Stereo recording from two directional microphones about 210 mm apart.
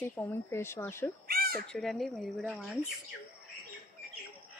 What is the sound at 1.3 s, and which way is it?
Crow, 45° right (ahead or behind).